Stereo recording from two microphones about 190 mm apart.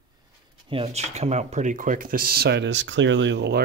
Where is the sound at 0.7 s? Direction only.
30° right (ahead or behind).